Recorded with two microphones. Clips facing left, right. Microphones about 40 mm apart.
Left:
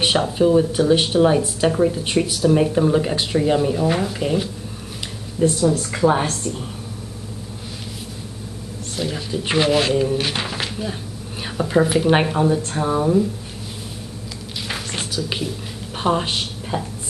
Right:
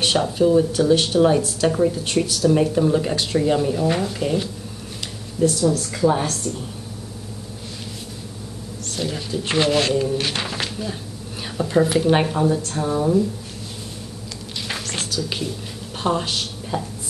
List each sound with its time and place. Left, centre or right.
0.0 s speech: centre
5.4 s a woman's voice: left
8.9 s a woman's voice: centre
14.7 s a sound: centre
16.0 s a woman's voice: centre